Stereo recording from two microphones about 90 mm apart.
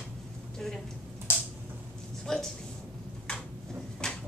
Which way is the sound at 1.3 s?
25° left (ahead or behind).